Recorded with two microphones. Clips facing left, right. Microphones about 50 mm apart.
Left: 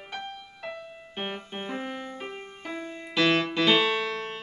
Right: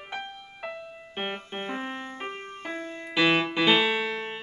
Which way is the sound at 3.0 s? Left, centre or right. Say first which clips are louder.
Right 1 dB; centre.